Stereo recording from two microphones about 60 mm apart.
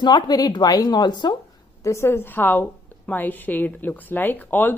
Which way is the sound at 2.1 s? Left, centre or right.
Left.